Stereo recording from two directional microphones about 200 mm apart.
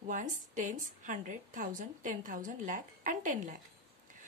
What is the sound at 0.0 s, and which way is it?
A woman's voice, 40° right (ahead or behind).